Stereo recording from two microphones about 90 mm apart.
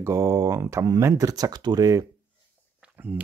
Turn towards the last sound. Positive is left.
turn(degrees=-20)  # may be behind; listen again after turning